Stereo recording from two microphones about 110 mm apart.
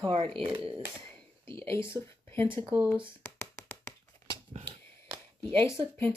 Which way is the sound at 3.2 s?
25° left (ahead or behind).